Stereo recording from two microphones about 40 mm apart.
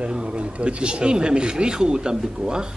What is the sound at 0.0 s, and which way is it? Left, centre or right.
Speech, right.